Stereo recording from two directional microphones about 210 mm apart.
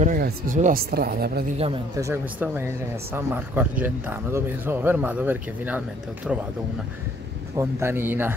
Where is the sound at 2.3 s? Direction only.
10° right (ahead or behind).